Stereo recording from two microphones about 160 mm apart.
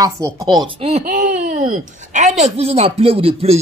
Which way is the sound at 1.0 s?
55° right (ahead or behind).